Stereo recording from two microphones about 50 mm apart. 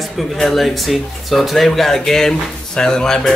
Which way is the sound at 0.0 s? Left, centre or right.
Centre.